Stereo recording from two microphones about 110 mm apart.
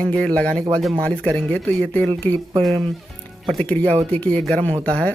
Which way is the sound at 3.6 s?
15° left (ahead or behind).